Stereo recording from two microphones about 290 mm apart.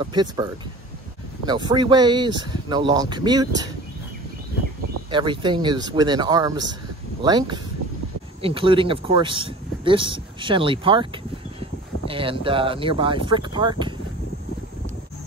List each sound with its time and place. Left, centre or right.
0.0 s speech: centre
5.1 s speech: centre
12.1 s speech: centre